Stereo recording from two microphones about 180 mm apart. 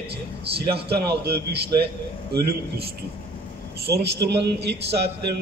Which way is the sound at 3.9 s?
65° right (ahead or behind).